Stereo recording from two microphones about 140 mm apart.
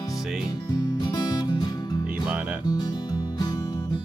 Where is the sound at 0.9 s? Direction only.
30° left (ahead or behind).